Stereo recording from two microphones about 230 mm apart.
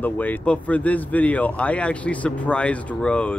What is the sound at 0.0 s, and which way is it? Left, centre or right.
Speech, centre.